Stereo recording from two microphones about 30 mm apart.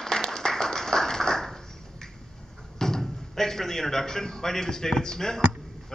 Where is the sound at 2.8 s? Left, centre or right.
Centre.